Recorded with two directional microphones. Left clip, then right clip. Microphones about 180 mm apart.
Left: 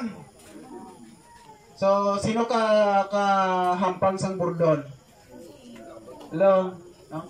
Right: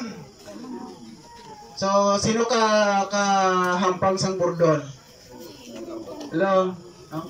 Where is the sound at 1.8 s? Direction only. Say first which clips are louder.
Right 2 dB; 10° left (ahead or behind).